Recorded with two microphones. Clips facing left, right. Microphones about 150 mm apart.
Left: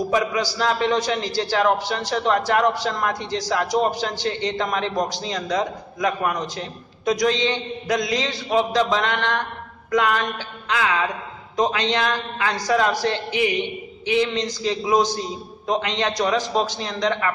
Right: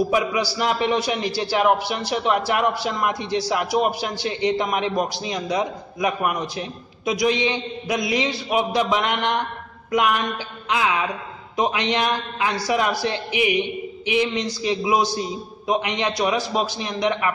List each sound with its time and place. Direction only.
0.1 s a man's voice: 10° right (ahead or behind)
9.8 s a sound: 15° right (ahead or behind)
10.7 s a man's voice: 15° right (ahead or behind)